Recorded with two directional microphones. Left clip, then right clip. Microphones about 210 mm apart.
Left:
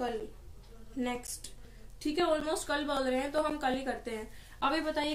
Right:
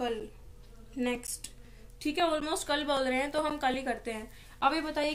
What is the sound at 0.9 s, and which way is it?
A woman's voice, 45° right (ahead or behind).